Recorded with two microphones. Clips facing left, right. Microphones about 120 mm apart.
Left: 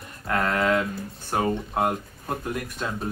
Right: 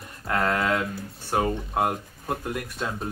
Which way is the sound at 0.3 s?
20° right (ahead or behind).